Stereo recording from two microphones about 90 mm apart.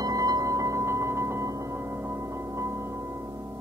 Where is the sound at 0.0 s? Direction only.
45° right (ahead or behind).